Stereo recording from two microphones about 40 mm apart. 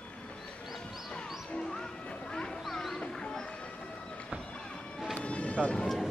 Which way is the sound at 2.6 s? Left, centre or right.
Centre.